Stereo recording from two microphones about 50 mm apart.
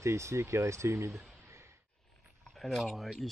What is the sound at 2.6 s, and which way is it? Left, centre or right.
Speech, centre.